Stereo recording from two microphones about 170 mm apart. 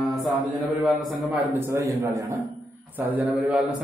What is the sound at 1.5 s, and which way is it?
A man's voice, 15° right (ahead or behind).